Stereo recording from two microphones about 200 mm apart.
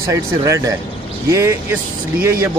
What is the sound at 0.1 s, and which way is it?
Speech, 15° right (ahead or behind).